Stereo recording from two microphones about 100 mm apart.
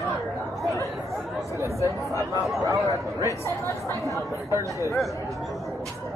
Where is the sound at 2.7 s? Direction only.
35° right (ahead or behind).